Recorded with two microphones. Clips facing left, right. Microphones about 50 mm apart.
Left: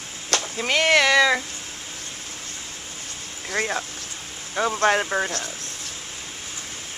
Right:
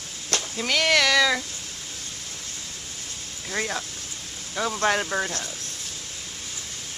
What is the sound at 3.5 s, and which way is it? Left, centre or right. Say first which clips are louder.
Speech: left 3 dB; centre.